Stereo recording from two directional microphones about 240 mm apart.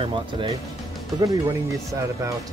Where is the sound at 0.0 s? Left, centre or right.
Right.